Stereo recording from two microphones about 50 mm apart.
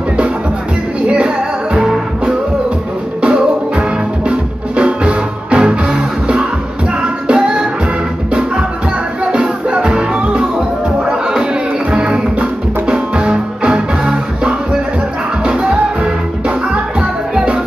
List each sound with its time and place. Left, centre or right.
1.0 s music: right